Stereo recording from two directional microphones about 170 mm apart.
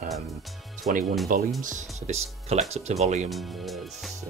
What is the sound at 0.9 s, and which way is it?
Speech, 45° right (ahead or behind).